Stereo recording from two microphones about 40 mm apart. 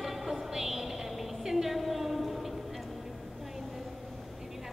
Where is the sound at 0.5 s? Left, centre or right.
Centre.